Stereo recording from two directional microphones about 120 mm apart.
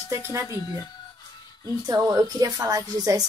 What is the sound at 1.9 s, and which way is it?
Speech, 30° right (ahead or behind).